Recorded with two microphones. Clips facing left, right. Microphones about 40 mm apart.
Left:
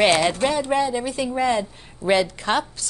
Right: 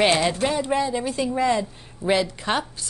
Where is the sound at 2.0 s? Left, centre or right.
Right.